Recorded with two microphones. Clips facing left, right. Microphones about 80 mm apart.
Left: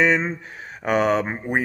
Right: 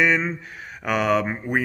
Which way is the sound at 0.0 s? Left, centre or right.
Left.